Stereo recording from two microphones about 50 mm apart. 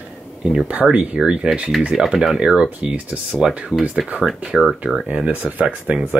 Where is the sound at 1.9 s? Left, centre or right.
Centre.